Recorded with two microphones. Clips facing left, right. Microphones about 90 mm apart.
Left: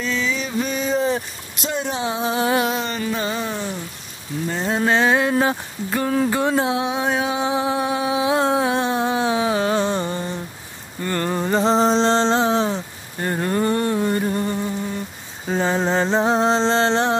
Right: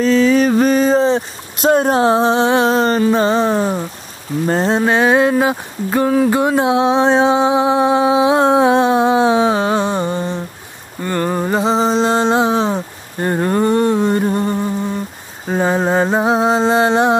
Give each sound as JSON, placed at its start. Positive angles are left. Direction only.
{"t": 0.0, "sound": "mantra", "side_deg": -40}
{"t": 1.6, "sound": "music", "side_deg": -50}
{"t": 4.6, "sound": "a sound", "side_deg": -20}
{"t": 5.3, "sound": "speech", "side_deg": -15}
{"t": 6.3, "sound": "music", "side_deg": -20}
{"t": 11.0, "sound": "a sound", "side_deg": -15}